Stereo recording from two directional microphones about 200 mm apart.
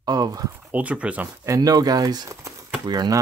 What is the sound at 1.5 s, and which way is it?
Speech, 20° right (ahead or behind).